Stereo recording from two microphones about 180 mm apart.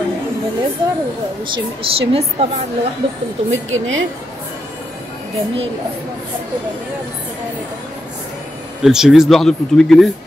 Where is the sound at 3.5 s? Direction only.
90° right.